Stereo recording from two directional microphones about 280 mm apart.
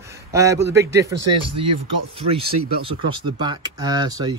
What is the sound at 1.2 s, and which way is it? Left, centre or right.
Speech, right.